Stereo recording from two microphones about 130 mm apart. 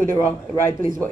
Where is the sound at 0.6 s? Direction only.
15° left (ahead or behind).